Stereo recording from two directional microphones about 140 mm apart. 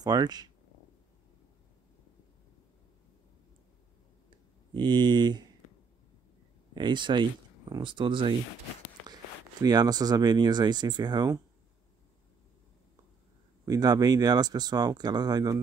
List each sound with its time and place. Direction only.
0.0 s speech: 30° right (ahead or behind)
4.3 s a sound: 35° right (ahead or behind)
6.7 s speech: 35° right (ahead or behind)
13.7 s speech: 25° right (ahead or behind)